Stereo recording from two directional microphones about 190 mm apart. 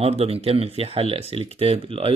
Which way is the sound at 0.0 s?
30° right (ahead or behind).